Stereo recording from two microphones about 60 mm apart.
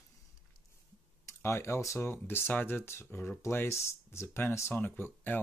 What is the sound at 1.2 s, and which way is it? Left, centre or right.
Speech, left.